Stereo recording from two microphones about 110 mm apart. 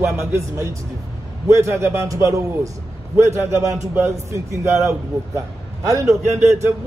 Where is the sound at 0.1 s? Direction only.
25° right (ahead or behind).